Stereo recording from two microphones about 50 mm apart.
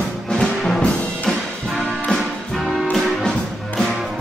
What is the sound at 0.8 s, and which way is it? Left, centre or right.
Music, left.